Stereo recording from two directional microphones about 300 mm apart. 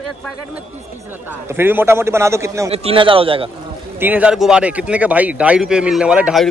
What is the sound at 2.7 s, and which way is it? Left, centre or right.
Speech, centre.